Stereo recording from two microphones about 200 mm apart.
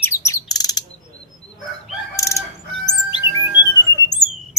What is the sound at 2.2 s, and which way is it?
Crowing, 15° left (ahead or behind).